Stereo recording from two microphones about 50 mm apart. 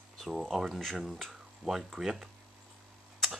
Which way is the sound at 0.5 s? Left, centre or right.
Centre.